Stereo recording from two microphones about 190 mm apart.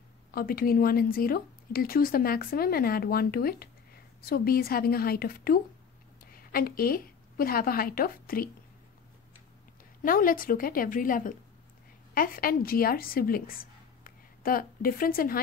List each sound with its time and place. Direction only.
0.3 s a woman's voice: 50° left (ahead or behind)
10.0 s a woman's voice: 45° left (ahead or behind)